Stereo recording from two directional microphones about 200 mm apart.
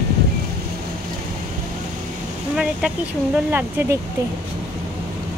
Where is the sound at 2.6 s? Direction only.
5° right (ahead or behind).